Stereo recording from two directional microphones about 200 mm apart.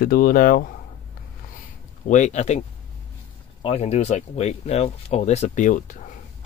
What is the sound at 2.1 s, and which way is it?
Speech, 35° left (ahead or behind).